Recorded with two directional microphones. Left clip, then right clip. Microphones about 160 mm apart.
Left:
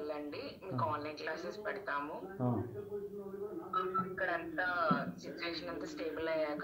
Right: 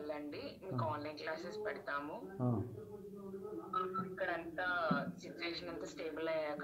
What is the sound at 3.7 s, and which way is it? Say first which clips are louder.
Speech: left 4 dB; 20° right (ahead or behind).